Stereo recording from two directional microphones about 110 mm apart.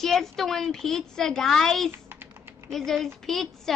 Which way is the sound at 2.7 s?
5° left (ahead or behind).